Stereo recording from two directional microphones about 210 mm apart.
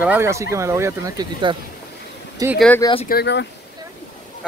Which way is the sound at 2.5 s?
5° left (ahead or behind).